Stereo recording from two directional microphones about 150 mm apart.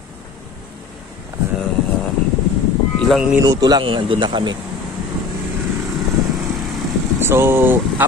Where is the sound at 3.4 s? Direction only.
25° right (ahead or behind).